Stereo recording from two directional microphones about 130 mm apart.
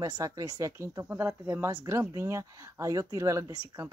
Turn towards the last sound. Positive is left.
turn(degrees=-25)  # may be behind; listen again after turning